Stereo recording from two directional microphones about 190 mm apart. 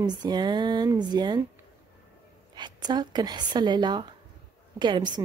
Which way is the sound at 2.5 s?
25° right (ahead or behind).